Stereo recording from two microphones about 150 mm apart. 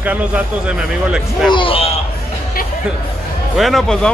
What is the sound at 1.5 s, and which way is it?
Speech, 35° left (ahead or behind).